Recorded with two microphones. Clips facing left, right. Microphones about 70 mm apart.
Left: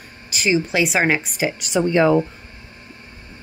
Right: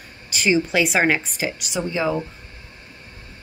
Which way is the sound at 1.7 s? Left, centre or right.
Left.